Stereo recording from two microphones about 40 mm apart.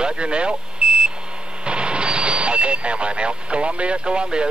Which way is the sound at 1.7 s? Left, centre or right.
Right.